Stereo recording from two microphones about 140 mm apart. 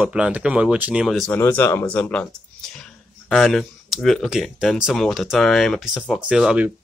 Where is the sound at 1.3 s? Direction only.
15° left (ahead or behind).